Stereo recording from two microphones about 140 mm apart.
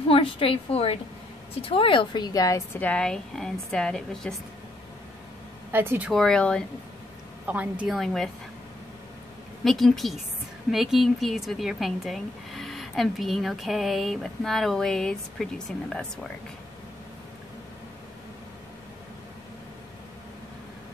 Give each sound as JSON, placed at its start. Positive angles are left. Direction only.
{"t": 0.1, "sound": "speech", "side_deg": 40}
{"t": 2.8, "sound": "speech", "side_deg": 5}
{"t": 5.7, "sound": "a woman's voice", "side_deg": -15}
{"t": 6.0, "sound": "speech", "side_deg": 5}
{"t": 7.4, "sound": "a woman's voice", "side_deg": -10}
{"t": 8.0, "sound": "speech", "side_deg": 0}
{"t": 9.7, "sound": "speech", "side_deg": 0}